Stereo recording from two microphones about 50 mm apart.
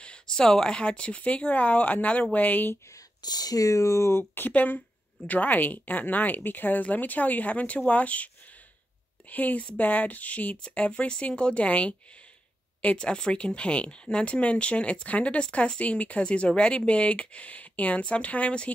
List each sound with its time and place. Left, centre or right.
0.0 s speech: centre; by 2.7 s left
3.6 s speech: left
4.5 s speech: left
9.3 s speech: left